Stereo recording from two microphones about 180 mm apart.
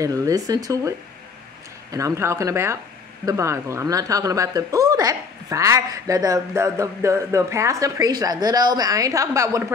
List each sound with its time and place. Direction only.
0.0 s speech: 20° right (ahead or behind)